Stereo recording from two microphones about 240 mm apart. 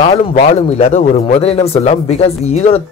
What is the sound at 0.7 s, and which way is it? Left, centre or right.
Speech, left.